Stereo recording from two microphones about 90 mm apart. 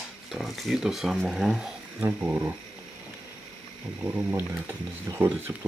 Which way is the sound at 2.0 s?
20° right (ahead or behind).